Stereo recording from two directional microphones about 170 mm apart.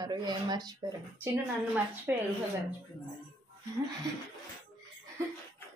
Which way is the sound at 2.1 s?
10° right (ahead or behind).